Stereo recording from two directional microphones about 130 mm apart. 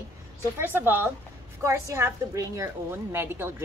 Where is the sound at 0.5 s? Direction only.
15° right (ahead or behind).